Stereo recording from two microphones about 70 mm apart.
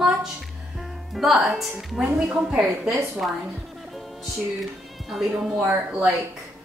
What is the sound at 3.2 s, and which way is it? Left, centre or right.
Speech, centre.